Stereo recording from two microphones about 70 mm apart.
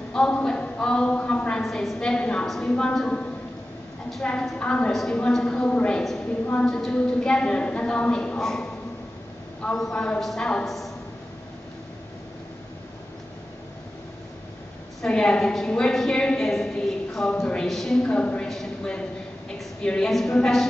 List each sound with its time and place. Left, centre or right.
0.1 s a sound: centre
1.6 s a woman's voice: centre
9.8 s a woman's voice: centre
15.0 s a woman's voice: centre
18.5 s a sound: centre
19.8 s a woman's voice: centre